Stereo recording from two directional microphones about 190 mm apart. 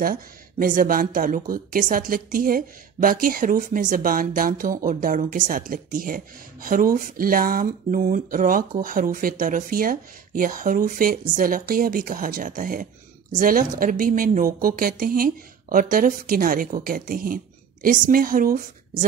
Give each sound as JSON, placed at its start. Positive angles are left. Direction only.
{"t": 0.0, "sound": "speech", "side_deg": -50}